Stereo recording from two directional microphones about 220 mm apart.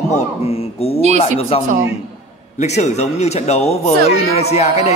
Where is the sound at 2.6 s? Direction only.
30° left (ahead or behind).